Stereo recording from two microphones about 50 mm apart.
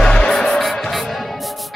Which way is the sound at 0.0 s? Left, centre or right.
Centre.